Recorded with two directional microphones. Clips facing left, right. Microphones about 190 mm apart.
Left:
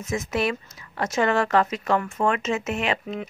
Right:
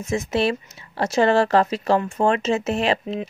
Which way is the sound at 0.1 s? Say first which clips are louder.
Right 4 dB; 30° right (ahead or behind).